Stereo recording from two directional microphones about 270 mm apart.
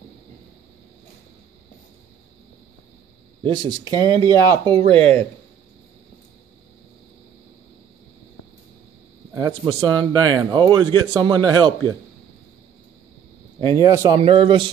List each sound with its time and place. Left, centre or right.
3.4 s a man's voice: centre
9.3 s a man's voice: centre
13.6 s a man's voice: centre